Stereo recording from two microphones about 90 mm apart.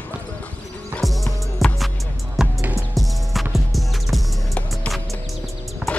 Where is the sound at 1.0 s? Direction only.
Centre (ahead or behind).